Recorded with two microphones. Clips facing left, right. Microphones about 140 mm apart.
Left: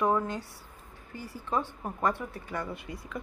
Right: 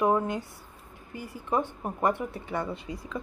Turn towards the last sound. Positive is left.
turn(degrees=-30)  # may be behind; listen again after turning